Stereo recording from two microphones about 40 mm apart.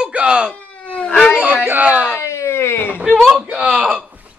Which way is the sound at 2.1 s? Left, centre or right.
Left.